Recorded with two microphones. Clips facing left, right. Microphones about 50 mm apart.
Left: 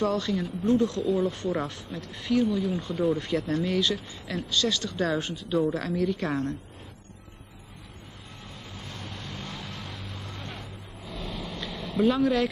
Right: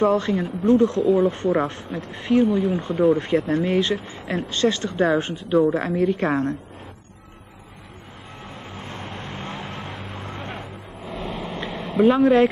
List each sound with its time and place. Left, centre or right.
0.0 s speech: right
8.6 s vehicle: right